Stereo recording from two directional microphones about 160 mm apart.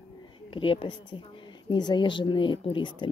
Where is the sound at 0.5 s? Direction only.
35° left (ahead or behind).